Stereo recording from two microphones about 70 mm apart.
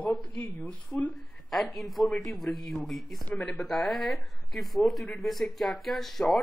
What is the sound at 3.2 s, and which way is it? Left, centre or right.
Speech, centre.